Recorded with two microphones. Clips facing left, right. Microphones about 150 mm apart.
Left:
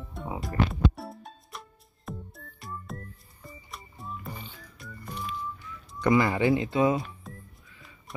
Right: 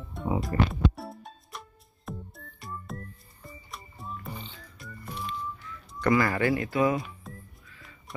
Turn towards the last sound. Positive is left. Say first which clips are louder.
# left 1 dB
turn(degrees=0)  # may be behind; listen again after turning